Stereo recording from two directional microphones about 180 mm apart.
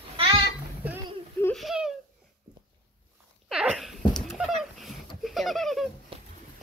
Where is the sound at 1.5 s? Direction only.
Centre (ahead or behind).